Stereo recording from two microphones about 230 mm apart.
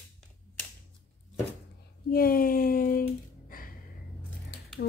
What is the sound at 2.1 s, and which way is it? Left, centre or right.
Speech, left.